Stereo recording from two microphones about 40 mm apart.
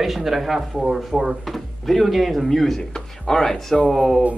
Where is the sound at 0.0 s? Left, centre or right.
Centre.